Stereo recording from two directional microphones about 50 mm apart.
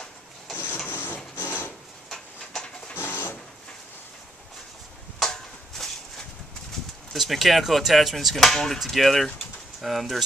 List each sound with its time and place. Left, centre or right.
0.8 s printer: left
2.0 s a sound: centre
2.9 s printer: left
5.2 s a sound: centre
7.1 s speech: centre
8.4 s speech: centre